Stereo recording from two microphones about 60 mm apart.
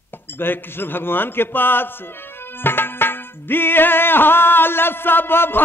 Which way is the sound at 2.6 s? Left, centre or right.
Left.